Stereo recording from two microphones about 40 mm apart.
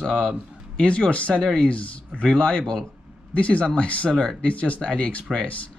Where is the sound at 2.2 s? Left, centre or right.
Centre.